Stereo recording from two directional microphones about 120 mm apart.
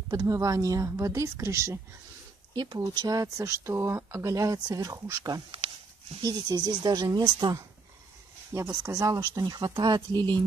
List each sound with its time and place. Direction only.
0.1 s speech: 30° right (ahead or behind)
2.5 s speech: 35° right (ahead or behind)
8.5 s speech: 25° right (ahead or behind)